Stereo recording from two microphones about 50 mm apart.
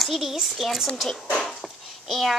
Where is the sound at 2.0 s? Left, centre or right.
Centre.